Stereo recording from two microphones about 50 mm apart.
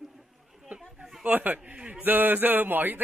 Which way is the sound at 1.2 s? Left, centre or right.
Right.